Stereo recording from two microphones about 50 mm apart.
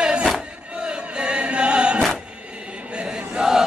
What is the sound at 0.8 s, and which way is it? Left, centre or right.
Chant, right.